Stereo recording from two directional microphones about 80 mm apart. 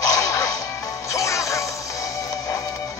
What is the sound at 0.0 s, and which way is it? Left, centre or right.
Whip, left.